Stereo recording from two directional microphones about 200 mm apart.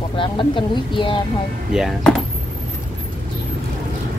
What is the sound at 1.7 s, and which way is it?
Speech, centre (ahead or behind).